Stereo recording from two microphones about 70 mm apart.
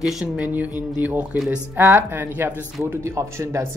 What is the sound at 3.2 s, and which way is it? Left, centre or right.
Speech, right.